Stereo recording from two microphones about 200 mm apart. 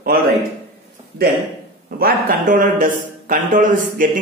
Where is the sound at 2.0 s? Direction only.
45° right (ahead or behind).